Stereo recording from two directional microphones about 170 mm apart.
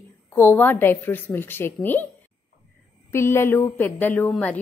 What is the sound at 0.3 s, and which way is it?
A woman's voice, 10° left (ahead or behind).